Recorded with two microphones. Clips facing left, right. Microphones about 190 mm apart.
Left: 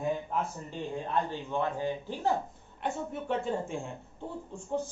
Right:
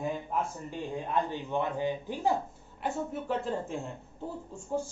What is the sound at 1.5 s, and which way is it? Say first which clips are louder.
Speech: even; 15° right (ahead or behind).